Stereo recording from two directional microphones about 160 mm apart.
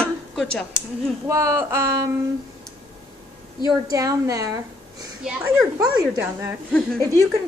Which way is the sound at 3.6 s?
20° right (ahead or behind).